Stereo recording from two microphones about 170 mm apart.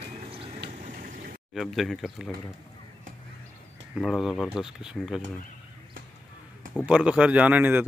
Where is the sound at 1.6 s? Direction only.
Centre (ahead or behind).